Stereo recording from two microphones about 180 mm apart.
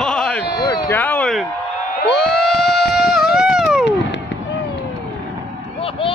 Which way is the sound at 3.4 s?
5° right (ahead or behind).